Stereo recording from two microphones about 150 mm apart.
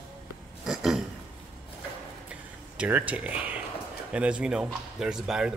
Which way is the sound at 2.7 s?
10° right (ahead or behind).